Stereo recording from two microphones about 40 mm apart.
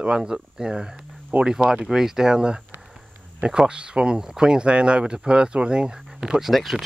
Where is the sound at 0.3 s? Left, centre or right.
Centre.